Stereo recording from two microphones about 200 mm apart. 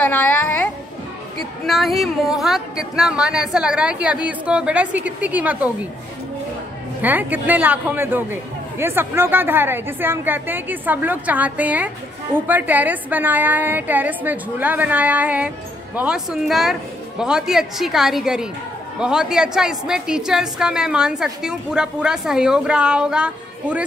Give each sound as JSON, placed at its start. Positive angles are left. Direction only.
{"t": 0.0, "sound": "a sound", "side_deg": 10}
{"t": 1.7, "sound": "a woman's voice", "side_deg": 0}
{"t": 7.0, "sound": "a man's voice", "side_deg": -10}